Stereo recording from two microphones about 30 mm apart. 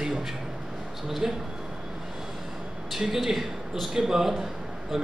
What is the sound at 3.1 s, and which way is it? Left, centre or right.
Speech, centre.